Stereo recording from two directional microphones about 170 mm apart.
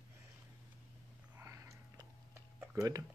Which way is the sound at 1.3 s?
15° right (ahead or behind).